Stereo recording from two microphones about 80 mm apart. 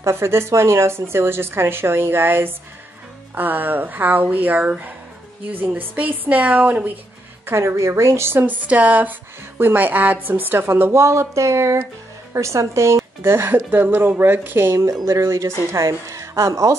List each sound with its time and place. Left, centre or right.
0.0 s speech: right
7.4 s speech: right